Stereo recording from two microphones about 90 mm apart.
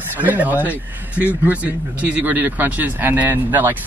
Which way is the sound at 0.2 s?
20° right (ahead or behind).